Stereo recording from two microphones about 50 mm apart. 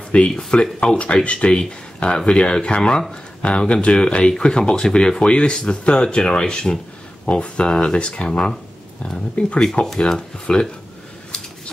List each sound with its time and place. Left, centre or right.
0.4 s speech: left